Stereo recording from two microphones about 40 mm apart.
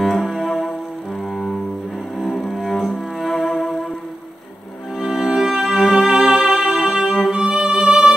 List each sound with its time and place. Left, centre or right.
0.0 s cello: centre
1.3 s music: centre
2.1 s cello: centre
5.0 s music: right
5.6 s music: centre
5.9 s music: centre